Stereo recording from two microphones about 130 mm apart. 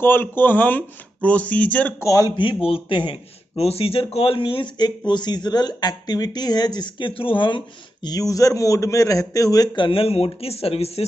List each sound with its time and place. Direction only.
0.0 s speech: 15° left (ahead or behind)
2.0 s a man's voice: 25° left (ahead or behind)
2.4 s a man's voice: 45° left (ahead or behind)